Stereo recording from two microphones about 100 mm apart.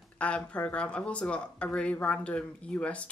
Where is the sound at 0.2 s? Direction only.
15° left (ahead or behind).